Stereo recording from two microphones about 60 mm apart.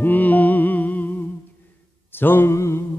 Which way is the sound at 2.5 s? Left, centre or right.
Left.